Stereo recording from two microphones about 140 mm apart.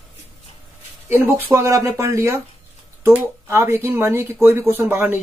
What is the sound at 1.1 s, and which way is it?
Speech, 15° right (ahead or behind).